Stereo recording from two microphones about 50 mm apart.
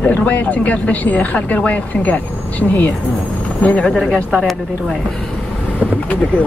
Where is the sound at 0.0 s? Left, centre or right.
Left.